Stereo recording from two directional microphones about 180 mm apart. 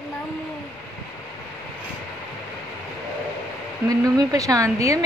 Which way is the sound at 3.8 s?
20° right (ahead or behind).